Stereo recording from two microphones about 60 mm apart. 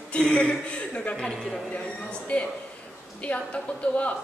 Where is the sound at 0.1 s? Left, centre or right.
Centre.